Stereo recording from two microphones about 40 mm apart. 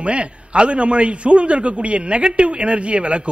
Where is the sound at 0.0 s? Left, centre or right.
Right.